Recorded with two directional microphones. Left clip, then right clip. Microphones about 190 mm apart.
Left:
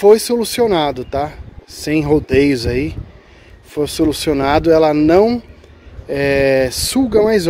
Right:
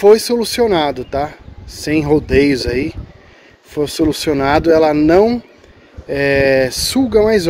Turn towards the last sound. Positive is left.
turn(degrees=15)  # may be behind; listen again after turning